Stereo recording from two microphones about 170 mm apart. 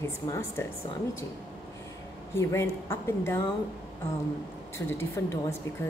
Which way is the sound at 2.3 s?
15° left (ahead or behind).